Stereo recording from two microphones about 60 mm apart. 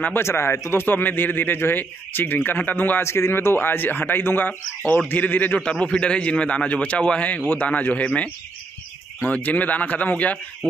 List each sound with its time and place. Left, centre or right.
0.1 s a man's voice: left
3.0 s a man's voice: left
5.6 s a man's voice: centre